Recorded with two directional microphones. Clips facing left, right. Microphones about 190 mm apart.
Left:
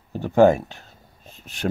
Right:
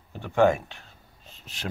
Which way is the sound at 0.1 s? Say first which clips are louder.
Left 6 dB; 40° left (ahead or behind).